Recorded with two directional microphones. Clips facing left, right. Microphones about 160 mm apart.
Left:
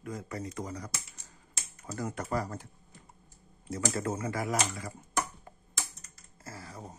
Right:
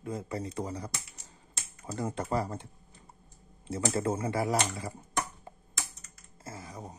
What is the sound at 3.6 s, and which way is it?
Speech, 25° right (ahead or behind).